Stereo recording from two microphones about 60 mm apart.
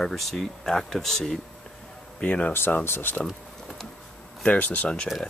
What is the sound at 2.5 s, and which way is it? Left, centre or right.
Speech, left.